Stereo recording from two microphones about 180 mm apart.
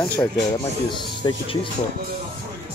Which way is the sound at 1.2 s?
25° left (ahead or behind).